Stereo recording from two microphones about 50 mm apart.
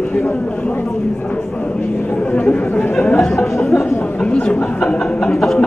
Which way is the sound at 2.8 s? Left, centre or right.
Centre.